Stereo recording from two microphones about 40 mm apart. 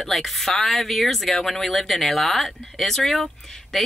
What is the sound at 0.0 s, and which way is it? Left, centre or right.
A woman's voice, centre.